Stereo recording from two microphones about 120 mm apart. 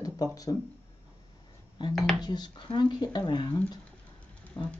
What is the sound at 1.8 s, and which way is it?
Speech, 40° left (ahead or behind).